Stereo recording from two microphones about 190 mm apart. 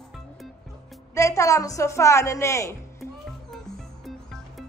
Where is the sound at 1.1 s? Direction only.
15° left (ahead or behind).